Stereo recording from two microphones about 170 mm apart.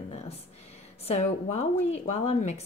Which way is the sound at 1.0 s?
40° left (ahead or behind).